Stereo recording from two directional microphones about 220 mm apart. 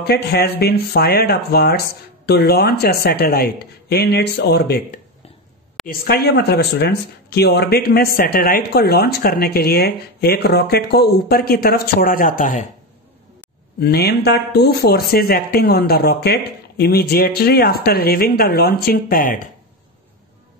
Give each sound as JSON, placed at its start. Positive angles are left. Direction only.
{"t": 0.0, "sound": "speech", "side_deg": 45}
{"t": 13.7, "sound": "speech", "side_deg": 45}